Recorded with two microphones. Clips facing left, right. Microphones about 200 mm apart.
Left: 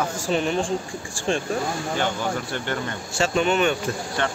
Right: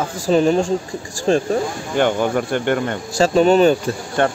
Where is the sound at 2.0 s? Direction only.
55° right (ahead or behind).